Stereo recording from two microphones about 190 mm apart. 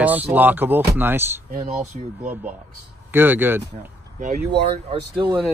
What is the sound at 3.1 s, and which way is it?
Speech, 10° right (ahead or behind).